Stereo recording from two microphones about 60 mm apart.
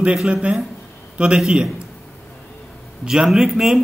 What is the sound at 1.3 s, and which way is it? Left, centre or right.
Speech, centre.